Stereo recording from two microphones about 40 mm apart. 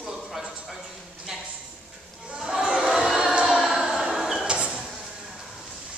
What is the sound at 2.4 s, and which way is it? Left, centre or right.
Crowd, centre.